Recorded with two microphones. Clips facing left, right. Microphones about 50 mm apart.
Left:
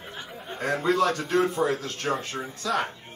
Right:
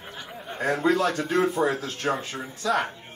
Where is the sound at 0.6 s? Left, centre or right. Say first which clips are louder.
Right 1 dB; centre.